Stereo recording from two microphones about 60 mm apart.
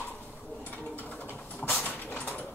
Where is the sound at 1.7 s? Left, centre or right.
Left.